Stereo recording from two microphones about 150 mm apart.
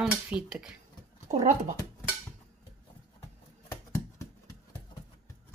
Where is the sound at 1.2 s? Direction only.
45° right (ahead or behind).